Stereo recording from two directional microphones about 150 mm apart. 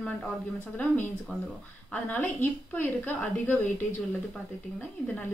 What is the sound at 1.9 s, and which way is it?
A woman's voice, 10° left (ahead or behind).